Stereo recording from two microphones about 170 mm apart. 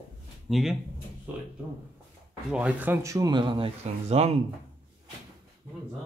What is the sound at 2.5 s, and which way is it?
Speech, 10° right (ahead or behind).